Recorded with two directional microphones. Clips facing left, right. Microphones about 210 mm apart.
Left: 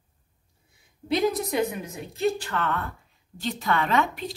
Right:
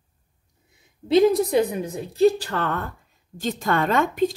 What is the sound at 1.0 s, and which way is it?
A woman's voice, 30° right (ahead or behind).